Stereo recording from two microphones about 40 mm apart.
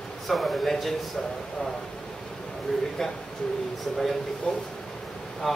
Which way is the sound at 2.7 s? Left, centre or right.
Centre.